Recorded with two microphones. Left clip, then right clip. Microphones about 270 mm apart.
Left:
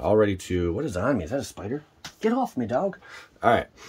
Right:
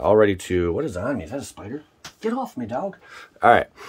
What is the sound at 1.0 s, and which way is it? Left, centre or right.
Speech, centre.